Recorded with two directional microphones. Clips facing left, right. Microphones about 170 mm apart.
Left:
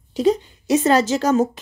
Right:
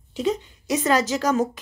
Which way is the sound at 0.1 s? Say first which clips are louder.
Left 6 dB; 35° left (ahead or behind).